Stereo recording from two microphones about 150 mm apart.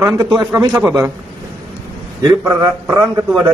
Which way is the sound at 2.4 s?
20° right (ahead or behind).